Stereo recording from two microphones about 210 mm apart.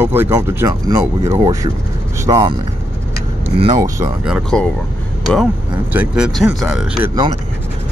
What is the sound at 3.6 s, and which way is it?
Speech, 20° right (ahead or behind).